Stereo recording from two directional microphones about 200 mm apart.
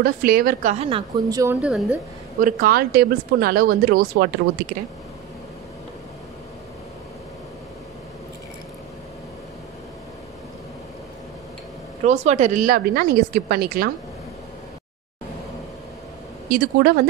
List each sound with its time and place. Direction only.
0.0 s speech: 45° right (ahead or behind)
0.8 s a woman's voice: 20° right (ahead or behind)
1.6 s a woman's voice: 5° right (ahead or behind)
2.4 s speech: 50° right (ahead or behind)
12.1 s speech: 35° right (ahead or behind)
16.4 s speech: 50° right (ahead or behind)